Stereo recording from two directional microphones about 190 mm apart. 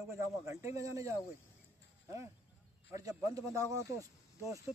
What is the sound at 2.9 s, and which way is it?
Speech, 20° right (ahead or behind).